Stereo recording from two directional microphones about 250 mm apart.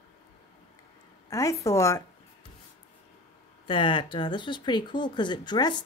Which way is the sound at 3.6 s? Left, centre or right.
Centre.